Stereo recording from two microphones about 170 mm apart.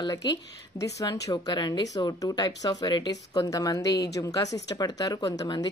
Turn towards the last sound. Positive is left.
turn(degrees=25)  # may be behind; listen again after turning